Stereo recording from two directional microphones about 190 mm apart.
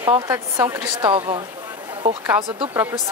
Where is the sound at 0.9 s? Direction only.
25° right (ahead or behind).